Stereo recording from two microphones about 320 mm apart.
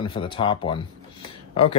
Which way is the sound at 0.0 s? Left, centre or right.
Centre.